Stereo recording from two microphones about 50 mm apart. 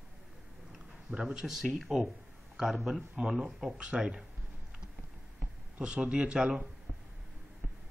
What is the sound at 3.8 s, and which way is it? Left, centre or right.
Speech, right.